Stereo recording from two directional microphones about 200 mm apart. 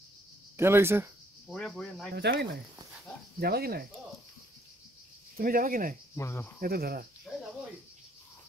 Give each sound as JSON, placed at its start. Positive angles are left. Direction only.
{"t": 0.6, "sound": "speech", "side_deg": -10}
{"t": 1.5, "sound": "speech", "side_deg": 0}
{"t": 2.1, "sound": "speech", "side_deg": -55}
{"t": 5.4, "sound": "speech", "side_deg": -45}
{"t": 6.1, "sound": "cricket", "side_deg": 10}
{"t": 6.6, "sound": "speech", "side_deg": -50}
{"t": 7.3, "sound": "speech", "side_deg": 0}